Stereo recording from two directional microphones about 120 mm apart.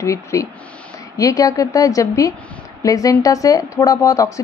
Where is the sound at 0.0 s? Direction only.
25° left (ahead or behind).